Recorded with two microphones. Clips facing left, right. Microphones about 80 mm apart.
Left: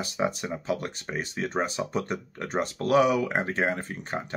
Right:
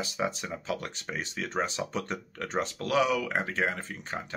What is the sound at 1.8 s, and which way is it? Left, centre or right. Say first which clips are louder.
Speech: left 3 dB; centre.